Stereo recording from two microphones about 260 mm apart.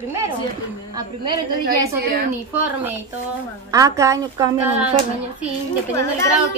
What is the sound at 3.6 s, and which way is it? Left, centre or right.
Speech, centre.